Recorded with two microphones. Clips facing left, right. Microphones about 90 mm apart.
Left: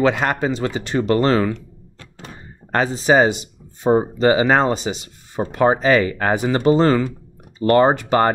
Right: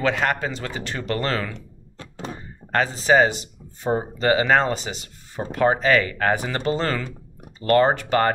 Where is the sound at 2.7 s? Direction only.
20° left (ahead or behind).